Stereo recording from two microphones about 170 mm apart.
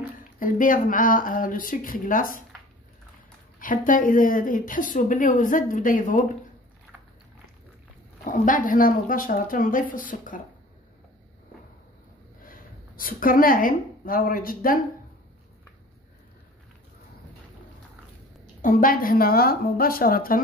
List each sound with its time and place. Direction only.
0.4 s a woman's voice: 55° left (ahead or behind)
3.5 s a woman's voice: 55° left (ahead or behind)
8.2 s a woman's voice: 50° left (ahead or behind)
12.4 s a woman's voice: 55° left (ahead or behind)
18.6 s speech: 55° left (ahead or behind)